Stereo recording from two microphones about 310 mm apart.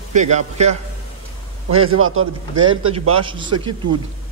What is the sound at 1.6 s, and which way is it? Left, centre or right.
A man's voice, right.